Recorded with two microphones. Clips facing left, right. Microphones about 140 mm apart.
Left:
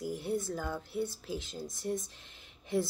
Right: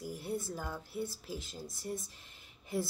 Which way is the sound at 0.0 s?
Centre (ahead or behind).